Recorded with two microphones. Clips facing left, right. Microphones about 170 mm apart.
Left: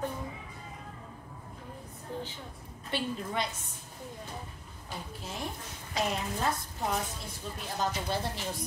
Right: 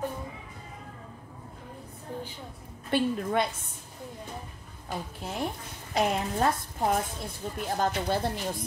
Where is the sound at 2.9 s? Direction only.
55° right (ahead or behind).